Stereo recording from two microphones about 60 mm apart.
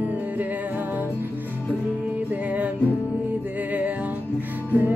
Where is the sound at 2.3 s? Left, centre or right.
Right.